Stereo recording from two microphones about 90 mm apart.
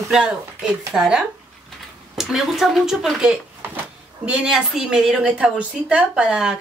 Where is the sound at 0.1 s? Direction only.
10° right (ahead or behind).